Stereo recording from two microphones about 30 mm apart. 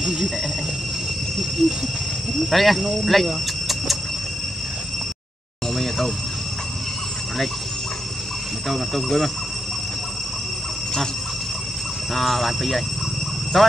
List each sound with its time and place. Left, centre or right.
0.0 s insect: right
1.6 s speech: centre
3.3 s a sound: centre
5.8 s a sound: centre
8.6 s speech: centre
12.1 s speech: centre